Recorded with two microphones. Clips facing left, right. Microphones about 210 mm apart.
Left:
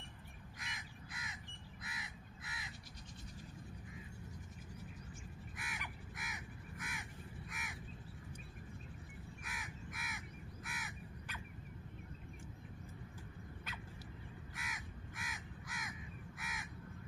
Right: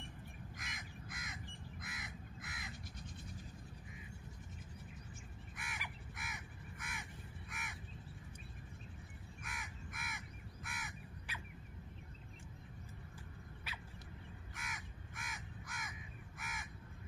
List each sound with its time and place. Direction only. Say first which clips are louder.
0.6 s crow: right 1 dB; 45° right (ahead or behind)
5.6 s crow: right 1 dB; centre (ahead or behind)
9.4 s crow: right 2 dB; centre (ahead or behind)
14.6 s crow: even; centre (ahead or behind)